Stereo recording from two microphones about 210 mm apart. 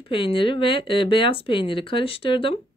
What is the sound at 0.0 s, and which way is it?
Speech, 25° left (ahead or behind).